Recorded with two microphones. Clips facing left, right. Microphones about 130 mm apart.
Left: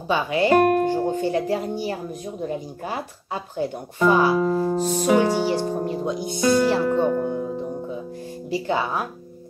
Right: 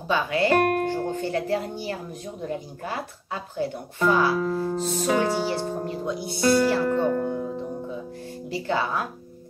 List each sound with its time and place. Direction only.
0.1 s speech: 15° left (ahead or behind)
3.5 s speech: 20° left (ahead or behind)